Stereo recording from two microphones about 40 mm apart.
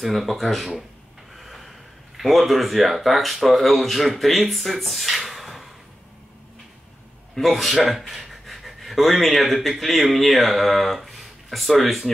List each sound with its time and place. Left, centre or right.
0.0 s speech: centre
1.3 s a sound: centre
2.1 s speech: centre
7.3 s speech: centre